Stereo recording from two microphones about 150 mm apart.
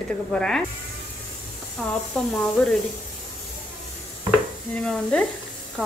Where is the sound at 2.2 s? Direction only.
10° left (ahead or behind).